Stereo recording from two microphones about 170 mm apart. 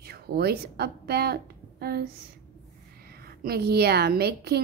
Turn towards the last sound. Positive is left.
turn(degrees=-70)  # may be behind; listen again after turning